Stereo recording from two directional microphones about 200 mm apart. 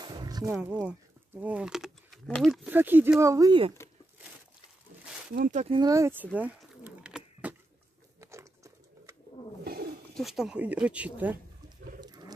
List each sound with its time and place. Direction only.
0.0 s a sound: 20° right (ahead or behind)
0.5 s speech: 10° right (ahead or behind)
5.3 s speech: 40° right (ahead or behind)
5.8 s speech: 15° right (ahead or behind)
6.3 s a sound: 5° right (ahead or behind)
8.2 s a sound: 15° right (ahead or behind)
9.7 s wild animals: 50° right (ahead or behind)
10.1 s speech: centre (ahead or behind)
12.0 s wild animals: 20° right (ahead or behind)